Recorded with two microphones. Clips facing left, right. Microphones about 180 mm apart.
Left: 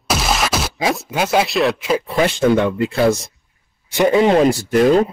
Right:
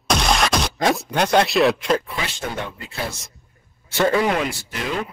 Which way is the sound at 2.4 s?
85° left.